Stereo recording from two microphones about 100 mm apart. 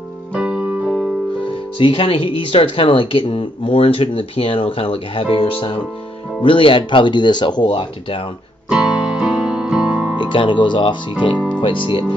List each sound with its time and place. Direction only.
0.3 s keyboard: 10° right (ahead or behind)
1.4 s speech: 60° left (ahead or behind)
8.6 s music: 10° right (ahead or behind)
10.1 s speech: 55° left (ahead or behind)